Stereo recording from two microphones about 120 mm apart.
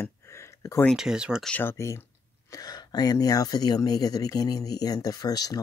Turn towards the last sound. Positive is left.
turn(degrees=30)  # may be behind; listen again after turning